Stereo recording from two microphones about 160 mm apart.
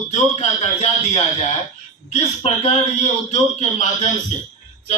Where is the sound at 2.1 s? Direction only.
45° left (ahead or behind).